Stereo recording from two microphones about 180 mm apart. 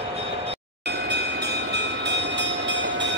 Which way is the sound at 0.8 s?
70° right (ahead or behind).